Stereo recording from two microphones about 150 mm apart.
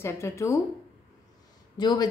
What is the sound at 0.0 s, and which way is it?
Speech, 20° left (ahead or behind).